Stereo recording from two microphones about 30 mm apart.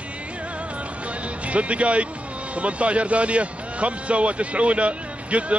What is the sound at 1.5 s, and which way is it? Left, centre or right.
A man's voice, right.